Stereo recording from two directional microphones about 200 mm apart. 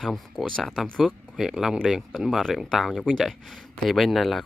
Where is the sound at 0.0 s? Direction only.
Centre (ahead or behind).